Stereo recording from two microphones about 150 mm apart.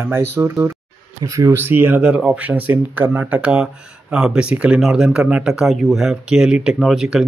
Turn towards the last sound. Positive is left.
turn(degrees=-5)  # may be behind; listen again after turning